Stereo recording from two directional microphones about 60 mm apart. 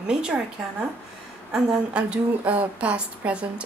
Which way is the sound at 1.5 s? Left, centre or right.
Centre.